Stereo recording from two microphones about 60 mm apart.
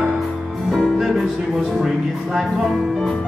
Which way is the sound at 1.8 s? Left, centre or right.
Centre.